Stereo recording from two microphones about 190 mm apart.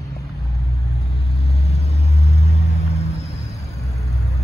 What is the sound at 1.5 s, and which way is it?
Vehicle, 35° left (ahead or behind).